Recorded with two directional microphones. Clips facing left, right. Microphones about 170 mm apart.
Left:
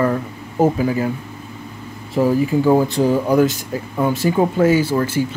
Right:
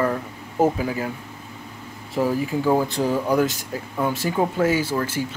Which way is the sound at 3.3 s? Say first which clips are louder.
Left 5 dB; 5° left (ahead or behind).